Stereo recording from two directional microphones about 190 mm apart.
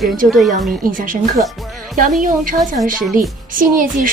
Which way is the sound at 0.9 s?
45° right (ahead or behind).